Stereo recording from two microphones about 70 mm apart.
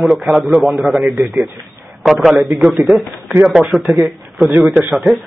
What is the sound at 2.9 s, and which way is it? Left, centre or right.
Speech, right.